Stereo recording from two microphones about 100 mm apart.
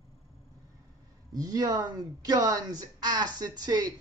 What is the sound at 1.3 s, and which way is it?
Speech, 40° right (ahead or behind).